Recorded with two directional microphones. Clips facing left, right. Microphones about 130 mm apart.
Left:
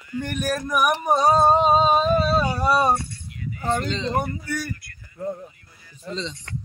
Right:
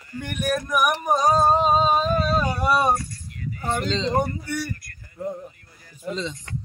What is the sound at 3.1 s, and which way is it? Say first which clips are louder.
Keys jangling: left 1 dB; 40° right (ahead or behind).